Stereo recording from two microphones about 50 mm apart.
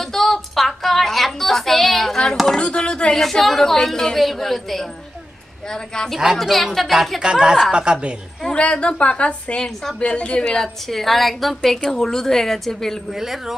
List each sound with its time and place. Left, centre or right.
0.0 s a sound: centre
3.2 s a woman's voice: centre
6.3 s a woman's voice: centre
7.2 s a woman's voice: centre
8.5 s a woman's voice: left; by 13.0 s centre
13.1 s speech: centre